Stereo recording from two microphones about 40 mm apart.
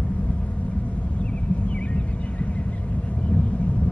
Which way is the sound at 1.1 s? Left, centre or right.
Left.